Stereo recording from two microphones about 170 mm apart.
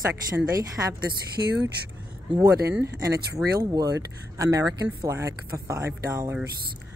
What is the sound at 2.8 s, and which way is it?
Speech, 20° right (ahead or behind).